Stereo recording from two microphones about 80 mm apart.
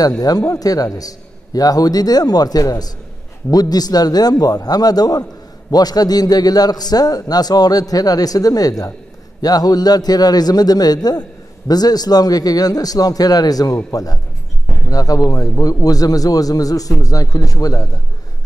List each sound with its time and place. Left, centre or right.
0.0 s a man's voice: left